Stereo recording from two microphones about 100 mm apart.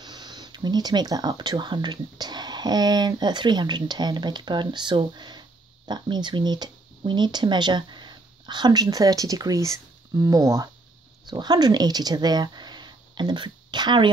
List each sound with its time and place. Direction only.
0.0 s speech: 45° right (ahead or behind)